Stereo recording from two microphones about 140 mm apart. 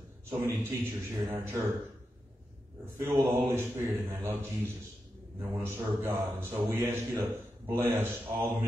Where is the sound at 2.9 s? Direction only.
20° right (ahead or behind).